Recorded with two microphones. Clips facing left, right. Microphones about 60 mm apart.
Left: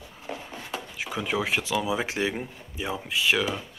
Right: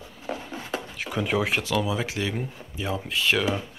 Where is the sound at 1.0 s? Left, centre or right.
Centre; by 2.4 s left.